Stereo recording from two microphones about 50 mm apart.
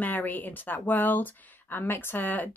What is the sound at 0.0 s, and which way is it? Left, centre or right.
Speech, left.